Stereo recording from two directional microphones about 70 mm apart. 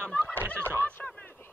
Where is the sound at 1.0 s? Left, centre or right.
Centre.